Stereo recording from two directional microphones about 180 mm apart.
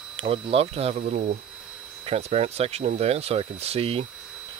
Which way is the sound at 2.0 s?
35° right (ahead or behind).